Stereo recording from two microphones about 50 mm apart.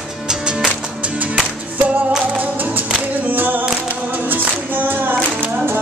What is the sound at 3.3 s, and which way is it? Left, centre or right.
Singing, right.